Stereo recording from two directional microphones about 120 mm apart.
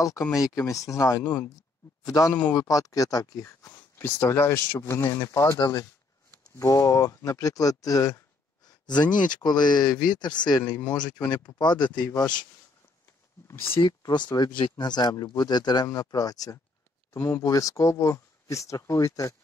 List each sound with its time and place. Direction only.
0.3 s speech: 25° left (ahead or behind)
8.6 s a sound: 35° left (ahead or behind)
9.1 s speech: 90° left
9.4 s speech: 35° left (ahead or behind)
13.7 s speech: 40° left (ahead or behind)